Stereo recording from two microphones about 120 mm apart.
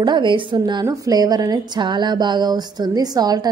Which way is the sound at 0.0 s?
40° right (ahead or behind).